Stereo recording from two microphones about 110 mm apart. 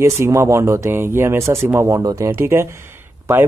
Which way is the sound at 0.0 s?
25° right (ahead or behind).